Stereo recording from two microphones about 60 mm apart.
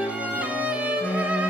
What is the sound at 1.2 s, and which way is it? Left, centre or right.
Music, right.